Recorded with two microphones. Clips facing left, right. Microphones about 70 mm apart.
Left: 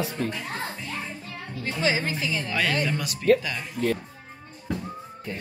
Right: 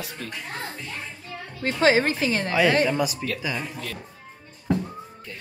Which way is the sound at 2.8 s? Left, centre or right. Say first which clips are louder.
Left 3 dB; centre.